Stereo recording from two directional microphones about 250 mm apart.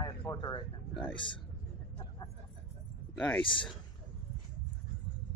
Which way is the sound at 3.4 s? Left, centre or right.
Centre.